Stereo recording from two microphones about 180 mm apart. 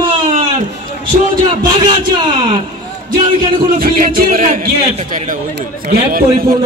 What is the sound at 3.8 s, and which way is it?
A man's voice, 50° right (ahead or behind).